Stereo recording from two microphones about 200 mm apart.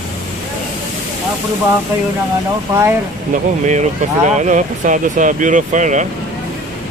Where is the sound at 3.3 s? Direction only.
35° right (ahead or behind).